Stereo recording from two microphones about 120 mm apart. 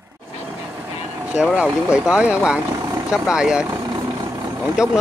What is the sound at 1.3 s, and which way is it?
Speech, 10° right (ahead or behind).